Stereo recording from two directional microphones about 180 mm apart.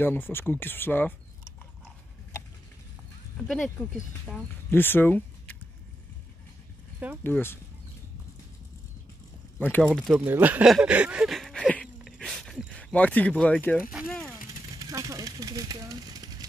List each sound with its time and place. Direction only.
0.0 s speech: 10° left (ahead or behind)
3.4 s speech: centre (ahead or behind)
4.6 s speech: 10° left (ahead or behind)
7.2 s speech: 10° left (ahead or behind)
9.6 s speech: 10° left (ahead or behind)
10.1 s speech: 10° right (ahead or behind); by 13.8 s 10° left (ahead or behind)
14.0 s vehicle: 5° left (ahead or behind)
14.8 s a sound: 20° right (ahead or behind)